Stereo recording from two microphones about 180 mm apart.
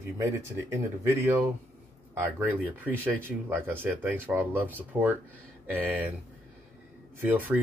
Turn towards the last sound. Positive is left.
turn(degrees=-10)  # may be behind; listen again after turning